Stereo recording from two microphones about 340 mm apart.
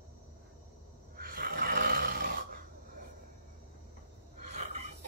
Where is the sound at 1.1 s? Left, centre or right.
Right.